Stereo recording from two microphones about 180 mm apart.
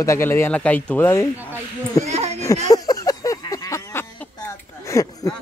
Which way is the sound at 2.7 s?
20° left (ahead or behind).